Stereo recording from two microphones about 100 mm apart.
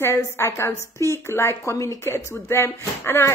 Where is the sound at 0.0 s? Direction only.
30° left (ahead or behind).